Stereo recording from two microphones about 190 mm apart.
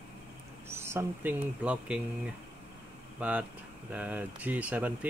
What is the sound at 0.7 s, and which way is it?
Speech, 15° right (ahead or behind).